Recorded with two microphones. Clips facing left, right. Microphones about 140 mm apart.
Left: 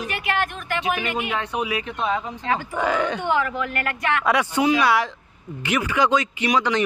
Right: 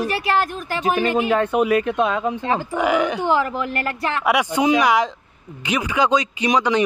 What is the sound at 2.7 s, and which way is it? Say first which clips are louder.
Speech: right 4 dB; 10° right (ahead or behind).